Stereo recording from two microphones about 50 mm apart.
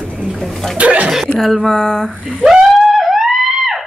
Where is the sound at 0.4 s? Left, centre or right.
Centre.